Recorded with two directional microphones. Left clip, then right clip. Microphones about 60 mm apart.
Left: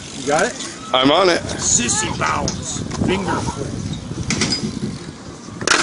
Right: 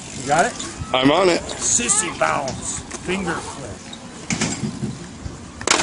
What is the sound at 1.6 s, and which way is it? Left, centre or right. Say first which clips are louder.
Speech: left 2 dB; right.